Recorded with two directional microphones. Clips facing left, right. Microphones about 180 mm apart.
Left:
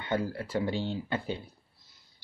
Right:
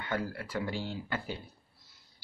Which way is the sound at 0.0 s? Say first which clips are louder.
Left 4 dB; 25° left (ahead or behind).